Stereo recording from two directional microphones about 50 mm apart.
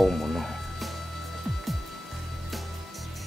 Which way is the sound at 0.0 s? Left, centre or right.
Centre.